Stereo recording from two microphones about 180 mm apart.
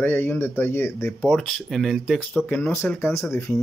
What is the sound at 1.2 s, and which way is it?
Speech, centre (ahead or behind).